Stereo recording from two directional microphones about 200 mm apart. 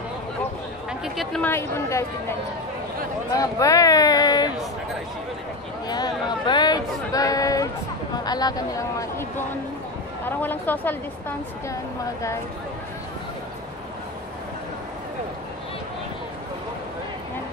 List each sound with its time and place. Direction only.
1.0 s a woman's voice: centre (ahead or behind)
3.3 s speech: 15° left (ahead or behind)
5.9 s speech: 20° left (ahead or behind)
10.2 s a woman's voice: 10° left (ahead or behind)